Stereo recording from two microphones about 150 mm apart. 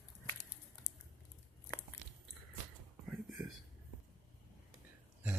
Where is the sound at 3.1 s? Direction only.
Centre (ahead or behind).